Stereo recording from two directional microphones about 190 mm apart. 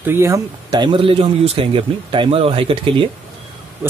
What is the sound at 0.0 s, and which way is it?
Speech, 15° right (ahead or behind).